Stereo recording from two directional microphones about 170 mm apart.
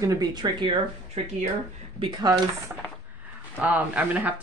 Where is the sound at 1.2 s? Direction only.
40° right (ahead or behind).